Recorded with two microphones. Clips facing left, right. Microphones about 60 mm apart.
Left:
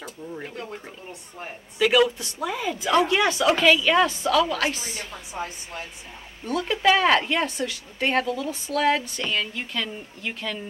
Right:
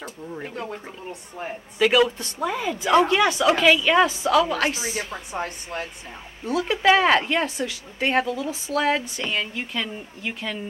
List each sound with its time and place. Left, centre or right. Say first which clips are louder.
0.0 s speech: right 1 dB; centre
1.8 s speech: right 1 dB; centre
3.5 s speech: even; centre
5.3 s a woman's voice: right 2 dB; right
6.4 s speech: right 2 dB; centre